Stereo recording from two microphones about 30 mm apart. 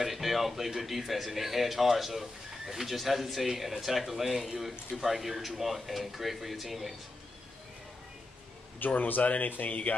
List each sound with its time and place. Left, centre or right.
0.0 s a man's voice: centre
8.7 s a man's voice: left